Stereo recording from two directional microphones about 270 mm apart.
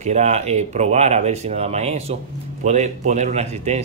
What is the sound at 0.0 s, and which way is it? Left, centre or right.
Speech, right.